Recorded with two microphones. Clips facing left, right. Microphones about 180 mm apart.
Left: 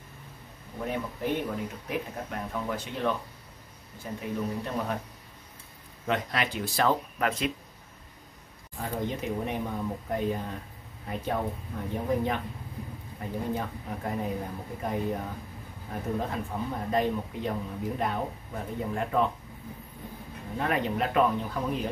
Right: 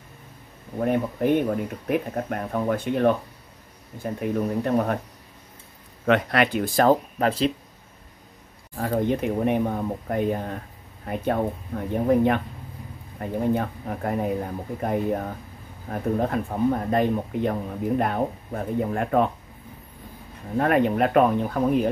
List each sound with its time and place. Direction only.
0.7 s speech: 55° right (ahead or behind)
6.0 s speech: 65° right (ahead or behind); by 7.5 s 30° right (ahead or behind)
8.7 s speech: 60° right (ahead or behind)
20.5 s speech: 55° right (ahead or behind)